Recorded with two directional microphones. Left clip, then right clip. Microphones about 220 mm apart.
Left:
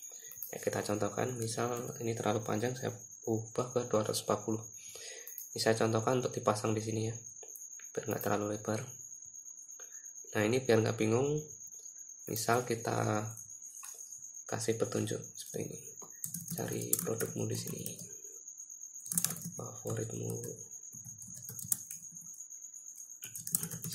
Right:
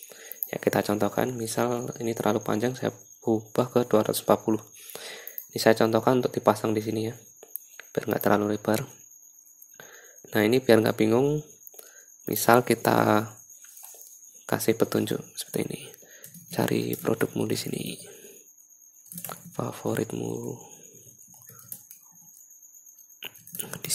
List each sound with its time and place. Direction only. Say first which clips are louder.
0.5 s speech: right 10 dB; 35° right (ahead or behind)
10.3 s speech: right 9 dB; 35° right (ahead or behind)
14.4 s speech: right 10 dB; 40° right (ahead or behind)
19.5 s speech: right 12 dB; 40° right (ahead or behind)